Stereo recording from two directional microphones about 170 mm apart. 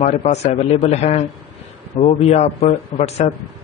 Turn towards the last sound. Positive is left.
turn(degrees=40)  # may be behind; listen again after turning